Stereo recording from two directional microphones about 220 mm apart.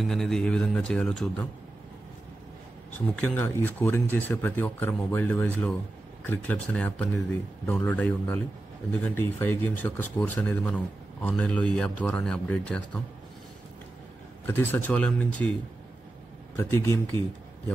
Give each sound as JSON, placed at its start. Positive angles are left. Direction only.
{"t": 0.0, "sound": "a man's voice", "side_deg": 0}
{"t": 3.2, "sound": "a man's voice", "side_deg": 10}
{"t": 14.4, "sound": "speech", "side_deg": 10}
{"t": 16.5, "sound": "speech", "side_deg": 15}